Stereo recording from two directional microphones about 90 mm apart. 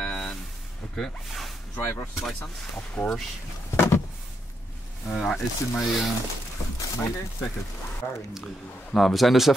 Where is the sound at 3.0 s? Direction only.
15° left (ahead or behind).